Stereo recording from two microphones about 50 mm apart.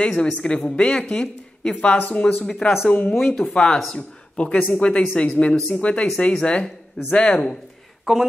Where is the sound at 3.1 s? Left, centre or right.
Centre.